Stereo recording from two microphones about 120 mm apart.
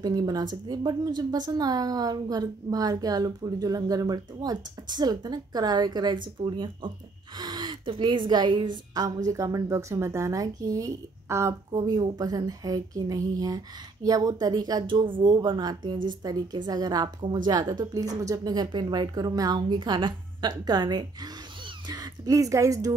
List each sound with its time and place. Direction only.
0.0 s a woman's voice: 30° right (ahead or behind)